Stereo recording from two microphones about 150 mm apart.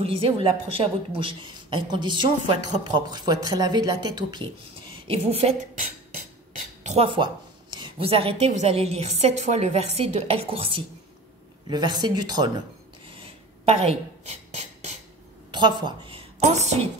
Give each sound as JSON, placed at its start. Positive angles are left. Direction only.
{"t": 0.0, "sound": "speech", "side_deg": -40}
{"t": 5.0, "sound": "speech", "side_deg": -40}
{"t": 6.1, "sound": "a sound", "side_deg": -55}
{"t": 7.7, "sound": "a woman's voice", "side_deg": -35}
{"t": 13.7, "sound": "a sound", "side_deg": -45}
{"t": 15.5, "sound": "a woman's voice", "side_deg": -30}